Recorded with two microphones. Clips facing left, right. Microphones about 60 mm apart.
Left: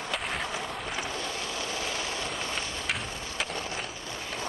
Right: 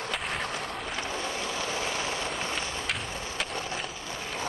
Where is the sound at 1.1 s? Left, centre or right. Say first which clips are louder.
Right 2 dB; right.